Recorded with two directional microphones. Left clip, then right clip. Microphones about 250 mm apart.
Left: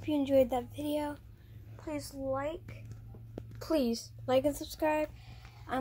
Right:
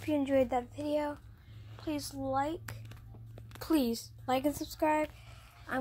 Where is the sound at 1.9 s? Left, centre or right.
Centre.